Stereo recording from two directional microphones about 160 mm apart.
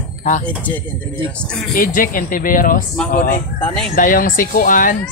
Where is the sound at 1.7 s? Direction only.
60° left (ahead or behind).